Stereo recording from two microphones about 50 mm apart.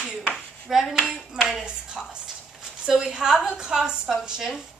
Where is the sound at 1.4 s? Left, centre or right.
Centre.